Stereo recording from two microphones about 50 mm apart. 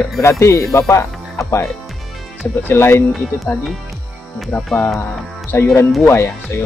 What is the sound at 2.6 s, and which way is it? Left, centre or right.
Speech, left.